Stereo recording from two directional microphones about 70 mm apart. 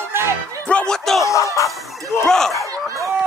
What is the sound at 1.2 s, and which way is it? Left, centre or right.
Music, left.